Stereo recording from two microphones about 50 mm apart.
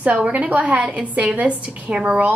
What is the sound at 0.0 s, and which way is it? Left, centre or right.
A woman's voice, right.